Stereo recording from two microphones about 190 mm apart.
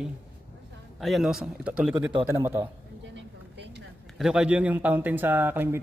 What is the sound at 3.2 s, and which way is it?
Vehicle, 65° right (ahead or behind).